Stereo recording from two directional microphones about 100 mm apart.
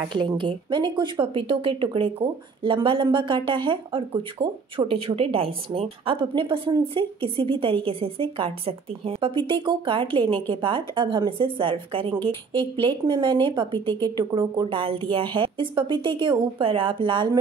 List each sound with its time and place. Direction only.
0.1 s a woman's voice: 55° right (ahead or behind)
14.8 s speech: 65° right (ahead or behind)